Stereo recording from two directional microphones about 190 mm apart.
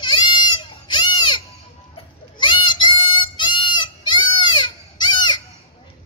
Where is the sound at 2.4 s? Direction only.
25° left (ahead or behind).